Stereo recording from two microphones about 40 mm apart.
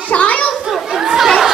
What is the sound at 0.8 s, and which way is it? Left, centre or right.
Chatter, centre.